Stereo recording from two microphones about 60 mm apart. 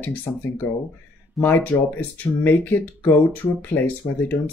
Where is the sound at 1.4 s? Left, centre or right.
Left.